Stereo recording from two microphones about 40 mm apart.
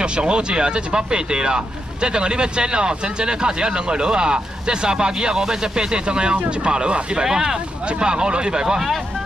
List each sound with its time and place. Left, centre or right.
0.0 s speech: right